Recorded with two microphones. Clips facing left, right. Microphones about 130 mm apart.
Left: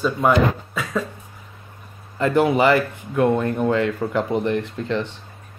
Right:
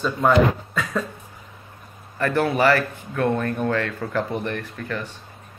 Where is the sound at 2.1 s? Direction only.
20° left (ahead or behind).